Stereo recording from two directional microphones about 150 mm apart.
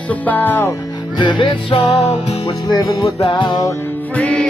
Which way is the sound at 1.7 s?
50° left (ahead or behind).